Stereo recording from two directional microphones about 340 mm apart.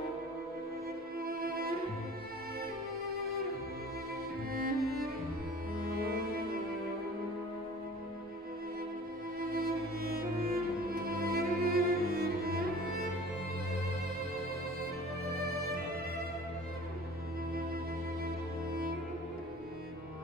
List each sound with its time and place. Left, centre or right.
1.2 s music: right
4.5 s music: right
9.4 s music: right
18.2 s music: right